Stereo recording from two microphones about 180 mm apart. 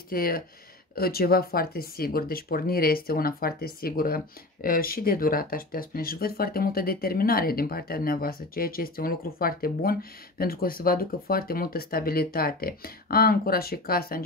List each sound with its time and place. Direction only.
0.1 s speech: 55° left (ahead or behind)